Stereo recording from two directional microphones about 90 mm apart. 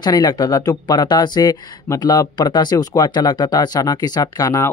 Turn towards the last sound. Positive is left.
turn(degrees=35)  # may be behind; listen again after turning